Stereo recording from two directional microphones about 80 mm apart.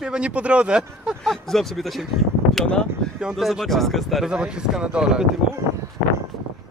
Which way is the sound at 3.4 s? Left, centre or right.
Centre.